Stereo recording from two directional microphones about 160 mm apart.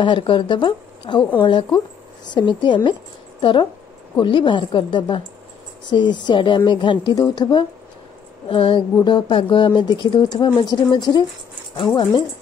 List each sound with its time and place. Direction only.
0.0 s a woman's voice: 30° left (ahead or behind)